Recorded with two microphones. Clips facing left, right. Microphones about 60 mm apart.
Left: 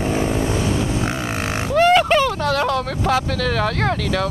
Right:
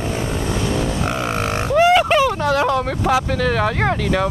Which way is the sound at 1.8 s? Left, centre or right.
Centre.